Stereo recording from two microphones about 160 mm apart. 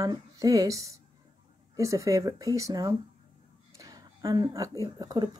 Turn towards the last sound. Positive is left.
turn(degrees=-25)  # may be behind; listen again after turning